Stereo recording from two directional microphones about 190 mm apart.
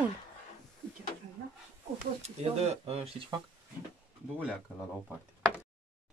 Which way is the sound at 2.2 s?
35° right (ahead or behind).